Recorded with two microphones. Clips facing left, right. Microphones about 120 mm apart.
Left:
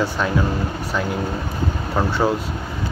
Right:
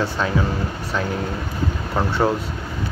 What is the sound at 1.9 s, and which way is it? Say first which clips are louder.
Speech: even; 5° left (ahead or behind).